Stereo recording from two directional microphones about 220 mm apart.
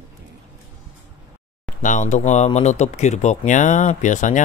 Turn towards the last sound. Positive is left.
turn(degrees=35)  # may be behind; listen again after turning